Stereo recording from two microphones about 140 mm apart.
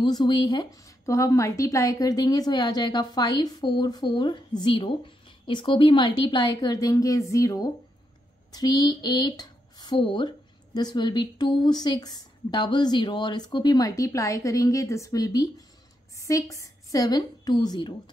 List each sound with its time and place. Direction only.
0.0 s a woman's voice: 30° left (ahead or behind)